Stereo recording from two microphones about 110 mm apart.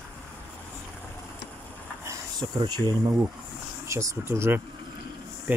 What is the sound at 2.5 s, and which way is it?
Speech, 40° right (ahead or behind).